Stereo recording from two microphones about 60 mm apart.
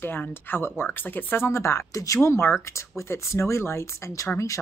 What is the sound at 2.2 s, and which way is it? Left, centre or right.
Speech, left.